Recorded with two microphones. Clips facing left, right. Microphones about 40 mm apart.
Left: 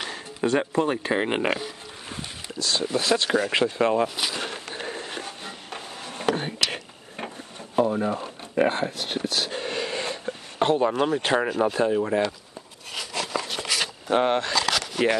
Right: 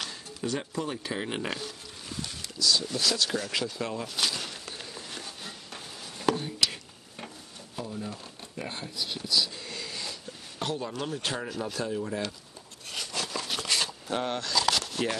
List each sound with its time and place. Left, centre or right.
0.1 s speech: left
2.6 s speech: left
4.4 s mechanisms: left
5.7 s a sound: left
7.7 s speech: left
13.1 s a sound: left
15.0 s rub: left